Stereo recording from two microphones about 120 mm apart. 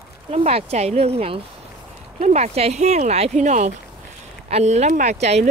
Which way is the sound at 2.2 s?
70° right (ahead or behind).